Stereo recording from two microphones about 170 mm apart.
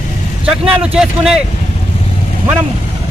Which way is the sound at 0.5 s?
5° right (ahead or behind).